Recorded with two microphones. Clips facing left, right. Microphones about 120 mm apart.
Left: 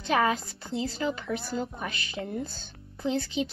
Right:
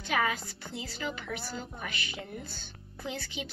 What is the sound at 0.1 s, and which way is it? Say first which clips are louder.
Speech: left 5 dB; 30° left (ahead or behind).